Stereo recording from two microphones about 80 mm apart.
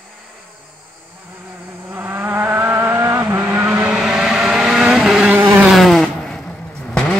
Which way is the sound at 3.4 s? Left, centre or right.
Right.